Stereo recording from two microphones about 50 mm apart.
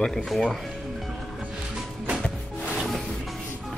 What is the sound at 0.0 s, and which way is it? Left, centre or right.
Speech, centre.